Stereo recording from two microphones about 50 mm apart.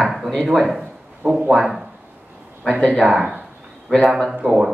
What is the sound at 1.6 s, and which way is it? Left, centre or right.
Speech, centre.